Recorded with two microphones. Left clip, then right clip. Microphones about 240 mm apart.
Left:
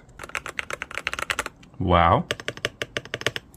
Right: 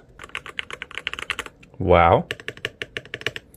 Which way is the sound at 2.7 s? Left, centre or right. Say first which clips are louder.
Left 2 dB; centre.